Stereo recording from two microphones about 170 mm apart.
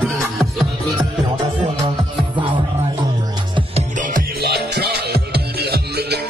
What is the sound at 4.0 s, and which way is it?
Music, 55° right (ahead or behind).